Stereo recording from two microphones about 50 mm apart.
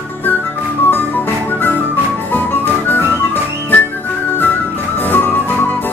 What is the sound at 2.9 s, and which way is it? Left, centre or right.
Music, left.